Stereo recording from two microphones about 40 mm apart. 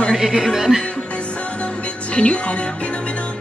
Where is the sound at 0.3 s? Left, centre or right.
Centre.